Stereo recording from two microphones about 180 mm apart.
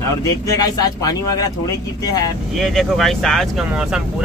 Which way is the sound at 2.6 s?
Centre (ahead or behind).